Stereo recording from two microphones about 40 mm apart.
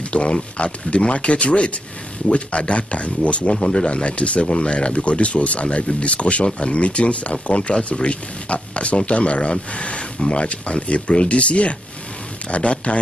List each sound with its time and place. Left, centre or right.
0.1 s speech: left